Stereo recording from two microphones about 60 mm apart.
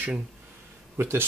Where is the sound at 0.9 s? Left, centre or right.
Right.